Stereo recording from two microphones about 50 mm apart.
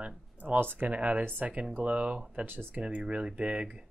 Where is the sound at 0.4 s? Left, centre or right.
Right.